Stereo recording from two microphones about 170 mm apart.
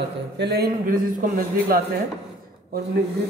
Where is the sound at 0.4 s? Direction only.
70° right (ahead or behind).